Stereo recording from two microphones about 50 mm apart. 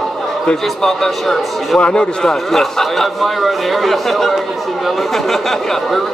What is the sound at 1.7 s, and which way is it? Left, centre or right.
A man's voice, centre.